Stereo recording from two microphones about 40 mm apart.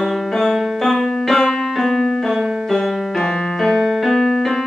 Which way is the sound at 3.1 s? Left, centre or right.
Centre.